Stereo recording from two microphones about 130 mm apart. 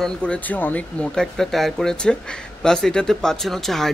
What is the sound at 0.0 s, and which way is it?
Speech, 10° left (ahead or behind).